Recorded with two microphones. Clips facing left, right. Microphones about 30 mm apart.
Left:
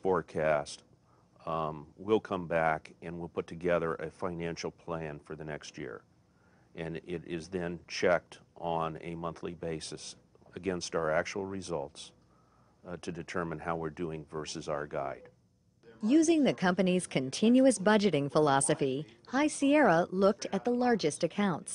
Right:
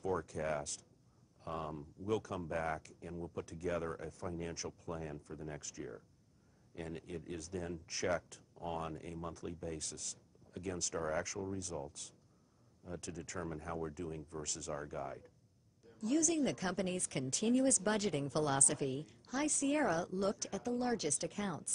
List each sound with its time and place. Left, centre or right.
0.0 s speech: left
15.8 s a sound: left
16.2 s speech: left